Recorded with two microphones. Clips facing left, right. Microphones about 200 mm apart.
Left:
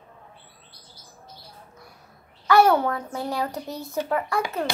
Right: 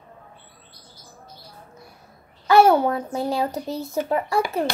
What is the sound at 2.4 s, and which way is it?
Speech, 25° right (ahead or behind).